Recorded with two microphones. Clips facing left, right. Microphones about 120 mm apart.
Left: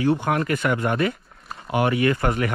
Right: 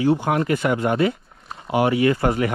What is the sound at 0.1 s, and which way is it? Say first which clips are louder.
Speech: right 2 dB; 25° right (ahead or behind).